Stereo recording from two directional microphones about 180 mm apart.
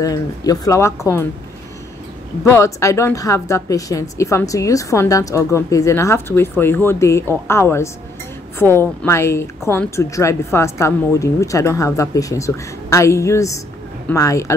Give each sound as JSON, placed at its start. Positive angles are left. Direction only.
{"t": 0.0, "sound": "a woman's voice", "side_deg": 20}
{"t": 2.4, "sound": "a woman's voice", "side_deg": 15}